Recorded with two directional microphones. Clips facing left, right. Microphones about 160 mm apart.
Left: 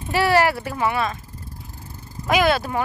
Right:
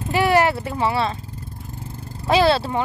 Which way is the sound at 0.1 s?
20° right (ahead or behind).